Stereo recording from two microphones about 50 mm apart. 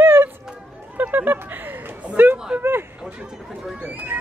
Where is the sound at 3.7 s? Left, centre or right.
Right.